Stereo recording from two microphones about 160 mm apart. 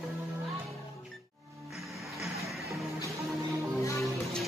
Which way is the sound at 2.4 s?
Centre (ahead or behind).